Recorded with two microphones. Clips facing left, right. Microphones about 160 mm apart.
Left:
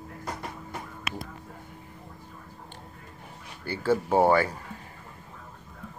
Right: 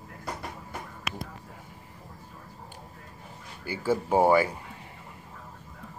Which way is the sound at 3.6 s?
10° right (ahead or behind).